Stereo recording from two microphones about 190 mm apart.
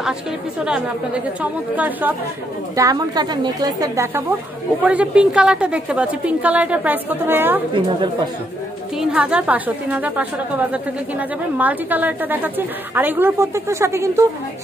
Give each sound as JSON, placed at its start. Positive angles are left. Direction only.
{"t": 0.6, "sound": "a woman's voice", "side_deg": -5}
{"t": 8.9, "sound": "a woman's voice", "side_deg": -5}